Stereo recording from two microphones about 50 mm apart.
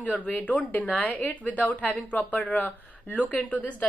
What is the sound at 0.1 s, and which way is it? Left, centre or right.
A woman's voice, left.